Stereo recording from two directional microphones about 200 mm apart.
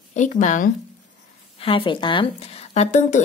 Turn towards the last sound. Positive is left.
turn(degrees=35)  # may be behind; listen again after turning